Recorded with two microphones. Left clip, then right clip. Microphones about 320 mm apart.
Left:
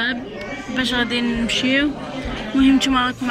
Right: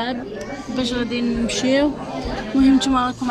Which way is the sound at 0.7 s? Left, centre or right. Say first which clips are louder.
Left 3 dB; centre.